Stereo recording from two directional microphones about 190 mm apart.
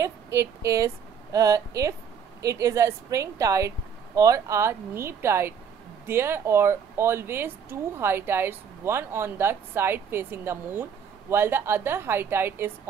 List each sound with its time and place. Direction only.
0.0 s speech: 15° right (ahead or behind)